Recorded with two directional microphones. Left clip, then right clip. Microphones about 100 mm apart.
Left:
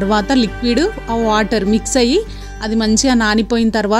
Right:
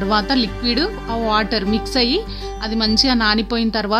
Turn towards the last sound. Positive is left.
turn(degrees=40)  # may be behind; listen again after turning